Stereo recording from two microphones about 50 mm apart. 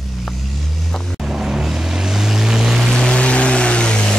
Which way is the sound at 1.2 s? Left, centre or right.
Centre.